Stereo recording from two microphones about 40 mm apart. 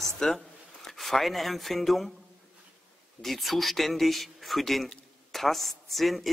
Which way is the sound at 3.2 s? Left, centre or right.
Centre.